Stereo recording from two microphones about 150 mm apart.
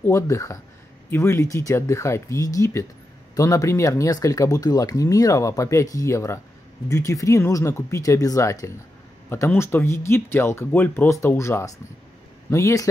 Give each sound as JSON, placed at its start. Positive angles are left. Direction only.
{"t": 0.0, "sound": "speech", "side_deg": 20}